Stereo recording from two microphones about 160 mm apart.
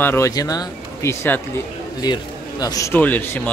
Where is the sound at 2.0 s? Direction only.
25° left (ahead or behind).